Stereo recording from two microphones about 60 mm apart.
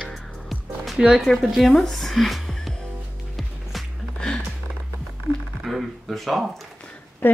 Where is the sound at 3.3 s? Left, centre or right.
Centre.